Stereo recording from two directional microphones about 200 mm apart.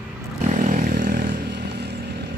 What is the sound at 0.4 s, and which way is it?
Vehicle, 40° right (ahead or behind).